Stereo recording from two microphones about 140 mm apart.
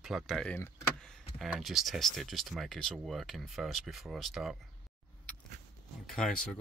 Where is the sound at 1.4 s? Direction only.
Centre (ahead or behind).